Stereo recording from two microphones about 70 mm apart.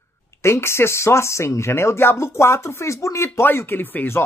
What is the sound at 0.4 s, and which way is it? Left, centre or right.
Speech, left.